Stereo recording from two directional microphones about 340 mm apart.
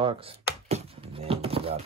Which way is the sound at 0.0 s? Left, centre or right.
Centre.